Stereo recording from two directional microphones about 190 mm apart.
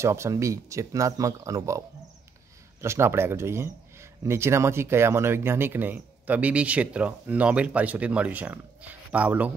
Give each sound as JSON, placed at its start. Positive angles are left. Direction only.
{"t": 0.0, "sound": "speech", "side_deg": -15}
{"t": 2.8, "sound": "speech", "side_deg": -15}